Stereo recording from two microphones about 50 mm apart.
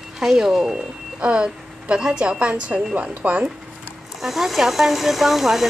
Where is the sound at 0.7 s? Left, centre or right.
Right.